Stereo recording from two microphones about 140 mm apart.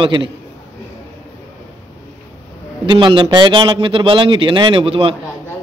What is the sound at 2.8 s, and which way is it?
Speech, 35° right (ahead or behind).